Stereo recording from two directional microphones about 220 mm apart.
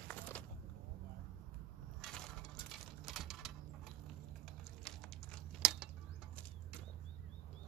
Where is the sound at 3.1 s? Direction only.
Centre (ahead or behind).